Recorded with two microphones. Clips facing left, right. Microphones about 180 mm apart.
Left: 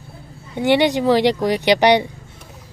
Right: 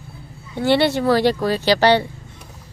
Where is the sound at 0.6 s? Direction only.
15° left (ahead or behind).